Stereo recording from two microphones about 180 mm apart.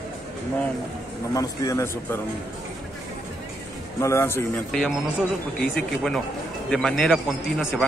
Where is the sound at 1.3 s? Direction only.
20° left (ahead or behind).